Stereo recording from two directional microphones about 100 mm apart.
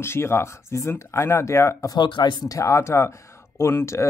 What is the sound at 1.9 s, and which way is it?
Speech, 50° left (ahead or behind).